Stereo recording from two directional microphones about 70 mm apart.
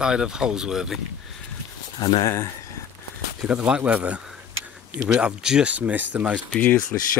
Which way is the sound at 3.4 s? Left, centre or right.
Centre.